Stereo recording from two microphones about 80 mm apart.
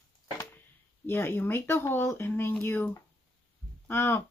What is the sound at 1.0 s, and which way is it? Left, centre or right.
Speech, left.